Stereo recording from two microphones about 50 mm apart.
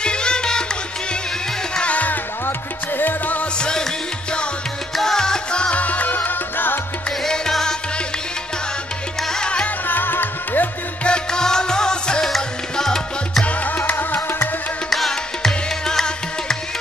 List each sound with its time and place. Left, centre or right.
0.0 s music: centre
1.8 s music: left
3.0 s music: left
3.5 s music: centre
4.9 s music: centre; by 6.8 s left
7.1 s music: centre
9.3 s music: centre
9.8 s music: left
11.1 s music: centre
13.5 s music: left
14.9 s music: centre